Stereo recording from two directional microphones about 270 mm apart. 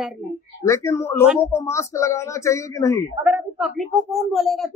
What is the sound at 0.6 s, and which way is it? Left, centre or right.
A man's voice, centre.